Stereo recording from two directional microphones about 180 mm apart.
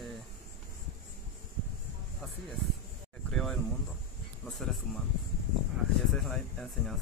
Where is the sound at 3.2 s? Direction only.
5° left (ahead or behind).